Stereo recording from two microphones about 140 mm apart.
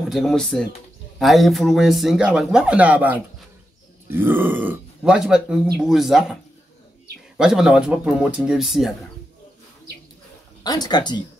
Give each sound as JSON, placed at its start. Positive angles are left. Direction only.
{"t": 0.1, "sound": "speech", "side_deg": 0}
{"t": 7.3, "sound": "speech", "side_deg": -5}
{"t": 10.6, "sound": "speech", "side_deg": 30}